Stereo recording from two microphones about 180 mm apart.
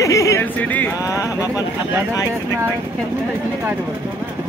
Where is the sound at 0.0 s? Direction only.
15° left (ahead or behind).